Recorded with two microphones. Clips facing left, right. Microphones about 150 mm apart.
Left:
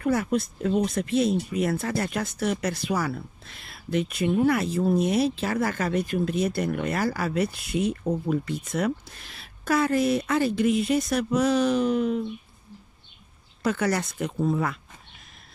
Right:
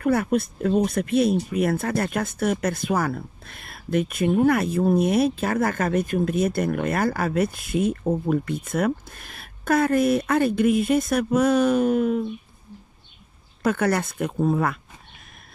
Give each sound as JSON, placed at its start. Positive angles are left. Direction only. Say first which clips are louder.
{"t": 0.0, "sound": "speech", "louder": "right 3 dB", "side_deg": -60}
{"t": 13.6, "sound": "speech", "louder": "right 3 dB", "side_deg": -55}